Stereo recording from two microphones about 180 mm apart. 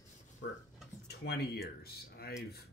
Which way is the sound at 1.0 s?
65° left (ahead or behind).